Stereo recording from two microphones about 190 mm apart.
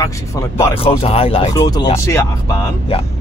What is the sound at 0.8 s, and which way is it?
Speech, 30° left (ahead or behind).